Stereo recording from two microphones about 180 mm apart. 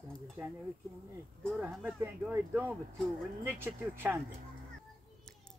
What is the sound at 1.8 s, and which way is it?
Speech, 10° right (ahead or behind).